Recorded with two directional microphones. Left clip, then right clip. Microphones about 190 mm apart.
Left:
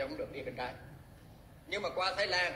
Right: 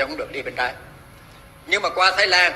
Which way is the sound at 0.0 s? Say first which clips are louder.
Right 13 dB; 40° right (ahead or behind).